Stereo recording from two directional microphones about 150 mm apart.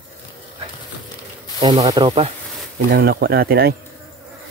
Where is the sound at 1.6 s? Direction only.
25° right (ahead or behind).